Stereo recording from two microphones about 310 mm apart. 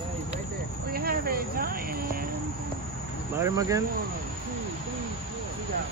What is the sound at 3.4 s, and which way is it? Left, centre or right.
Speech, centre.